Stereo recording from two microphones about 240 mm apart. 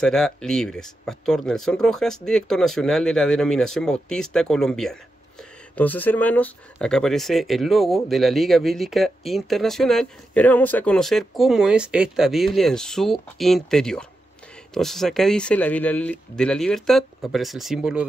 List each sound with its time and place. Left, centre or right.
0.0 s speech: centre